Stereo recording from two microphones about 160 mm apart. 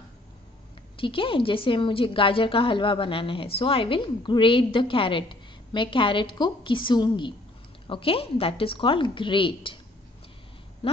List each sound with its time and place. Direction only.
0.9 s a woman's voice: 35° left (ahead or behind)
10.8 s speech: 35° left (ahead or behind)